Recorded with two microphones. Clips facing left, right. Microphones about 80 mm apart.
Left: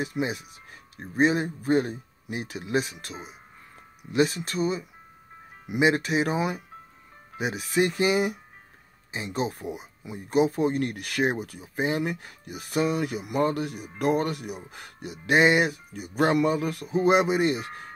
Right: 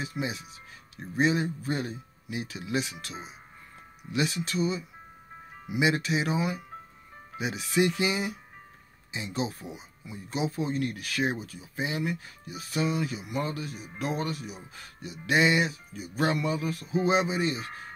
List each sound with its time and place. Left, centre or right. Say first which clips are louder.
0.0 s speech: left 5 dB; left